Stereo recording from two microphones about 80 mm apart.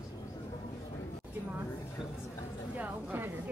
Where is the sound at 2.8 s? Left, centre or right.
Right.